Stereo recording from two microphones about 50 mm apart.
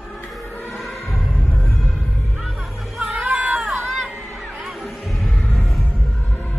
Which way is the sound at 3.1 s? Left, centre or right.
Right.